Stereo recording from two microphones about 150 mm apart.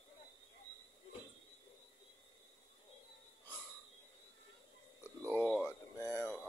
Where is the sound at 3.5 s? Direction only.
10° left (ahead or behind).